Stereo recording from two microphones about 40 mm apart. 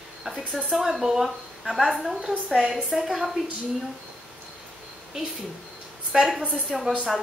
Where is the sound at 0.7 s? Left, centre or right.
Centre.